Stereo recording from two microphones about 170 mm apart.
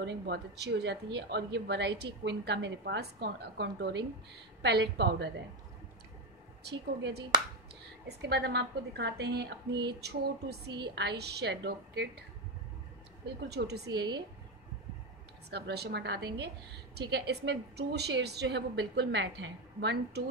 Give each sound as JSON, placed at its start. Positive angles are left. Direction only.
{"t": 0.0, "sound": "a woman's voice", "side_deg": -85}
{"t": 6.6, "sound": "a woman's voice", "side_deg": -80}
{"t": 13.5, "sound": "a woman's voice", "side_deg": -75}
{"t": 13.9, "sound": "speech", "side_deg": -25}
{"t": 15.5, "sound": "a woman's voice", "side_deg": -70}